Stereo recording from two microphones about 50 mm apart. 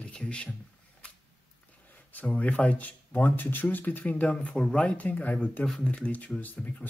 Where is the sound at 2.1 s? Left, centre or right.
Left.